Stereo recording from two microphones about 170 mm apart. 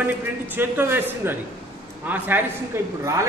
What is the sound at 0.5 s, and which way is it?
A man's voice, 10° right (ahead or behind).